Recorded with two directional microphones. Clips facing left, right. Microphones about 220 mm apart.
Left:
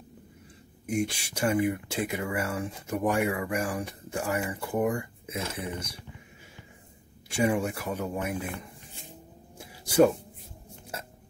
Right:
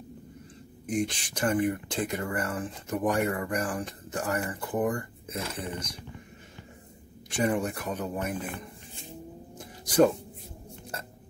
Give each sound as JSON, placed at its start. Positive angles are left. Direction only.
{"t": 0.8, "sound": "speech", "side_deg": 10}
{"t": 7.2, "sound": "speech", "side_deg": 10}
{"t": 9.6, "sound": "a sound", "side_deg": 10}